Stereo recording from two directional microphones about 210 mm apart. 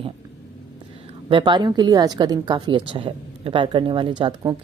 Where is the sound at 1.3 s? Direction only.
20° right (ahead or behind).